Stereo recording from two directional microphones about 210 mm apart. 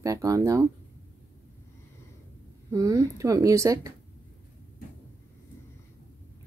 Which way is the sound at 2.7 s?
15° right (ahead or behind).